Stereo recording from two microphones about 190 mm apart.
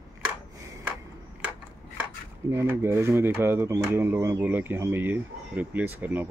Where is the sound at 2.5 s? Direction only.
10° right (ahead or behind).